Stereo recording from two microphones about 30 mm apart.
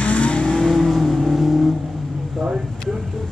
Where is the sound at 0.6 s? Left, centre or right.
Centre.